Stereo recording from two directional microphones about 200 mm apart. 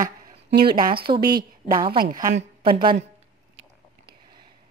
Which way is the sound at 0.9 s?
25° right (ahead or behind).